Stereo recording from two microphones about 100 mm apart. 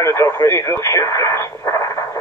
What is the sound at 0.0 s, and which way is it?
Speech, 30° left (ahead or behind).